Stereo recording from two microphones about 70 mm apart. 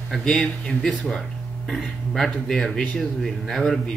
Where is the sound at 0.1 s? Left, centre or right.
Centre.